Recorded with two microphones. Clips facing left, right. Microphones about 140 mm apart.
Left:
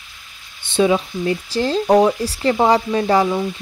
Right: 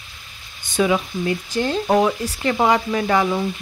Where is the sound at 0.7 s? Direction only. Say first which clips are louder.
Left 3 dB; 30° left (ahead or behind).